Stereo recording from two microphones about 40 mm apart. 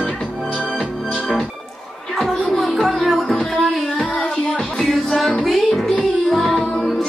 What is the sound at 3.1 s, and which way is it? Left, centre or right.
Music, centre.